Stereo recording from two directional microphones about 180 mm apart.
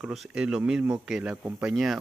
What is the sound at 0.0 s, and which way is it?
Speech, 5° right (ahead or behind).